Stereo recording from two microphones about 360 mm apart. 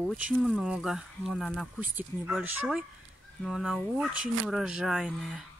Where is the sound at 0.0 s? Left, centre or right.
Centre.